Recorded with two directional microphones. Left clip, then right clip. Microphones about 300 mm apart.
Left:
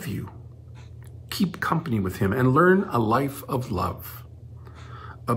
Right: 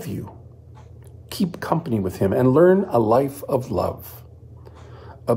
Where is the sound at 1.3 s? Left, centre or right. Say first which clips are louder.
Right 2 dB; centre.